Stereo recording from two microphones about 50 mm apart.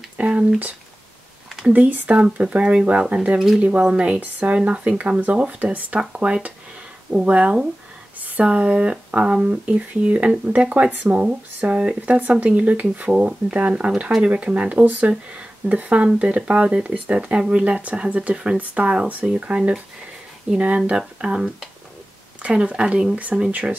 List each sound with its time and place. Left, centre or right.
0.2 s a sound: right
1.7 s speech: right
3.3 s speech: centre
3.8 s speech: right
5.9 s speech: centre
17.4 s speech: centre
17.6 s speech: right
22.5 s speech: centre
23.1 s speech: right